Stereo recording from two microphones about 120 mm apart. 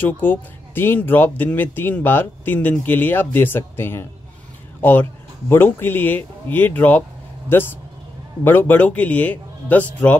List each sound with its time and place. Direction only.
0.0 s speech: 15° left (ahead or behind)
5.5 s speech: 20° left (ahead or behind)